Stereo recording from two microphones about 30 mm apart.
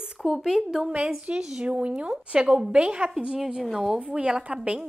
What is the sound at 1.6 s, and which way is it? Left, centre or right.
A woman's voice, right.